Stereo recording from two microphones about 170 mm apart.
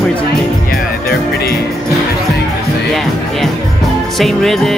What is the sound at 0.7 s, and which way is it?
Speech, 70° left (ahead or behind).